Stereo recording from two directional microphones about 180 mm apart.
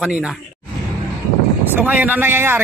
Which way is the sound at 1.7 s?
10° right (ahead or behind).